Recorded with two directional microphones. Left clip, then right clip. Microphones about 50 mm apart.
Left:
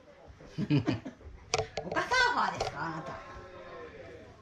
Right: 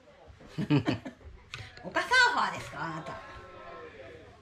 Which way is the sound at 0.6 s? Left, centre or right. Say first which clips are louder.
Right 2 dB; right.